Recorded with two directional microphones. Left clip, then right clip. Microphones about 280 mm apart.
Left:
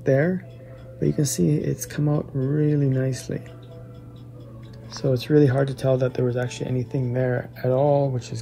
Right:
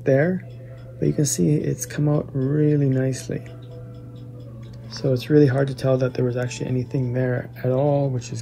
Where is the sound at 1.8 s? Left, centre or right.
Centre.